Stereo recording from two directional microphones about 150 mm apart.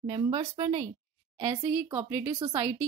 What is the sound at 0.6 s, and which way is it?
Speech, 35° right (ahead or behind).